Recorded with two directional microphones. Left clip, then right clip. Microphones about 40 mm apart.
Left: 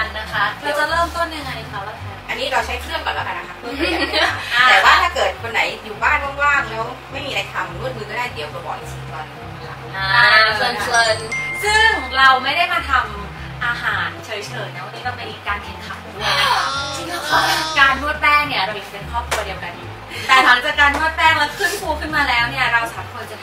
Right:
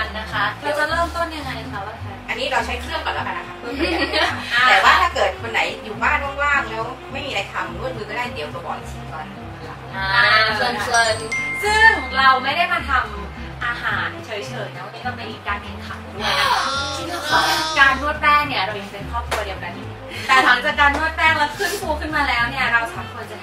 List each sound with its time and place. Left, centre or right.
0.0 s music: centre
2.2 s music: centre
5.1 s a woman's voice: right
9.9 s music: centre
16.2 s speech: centre
18.2 s music: centre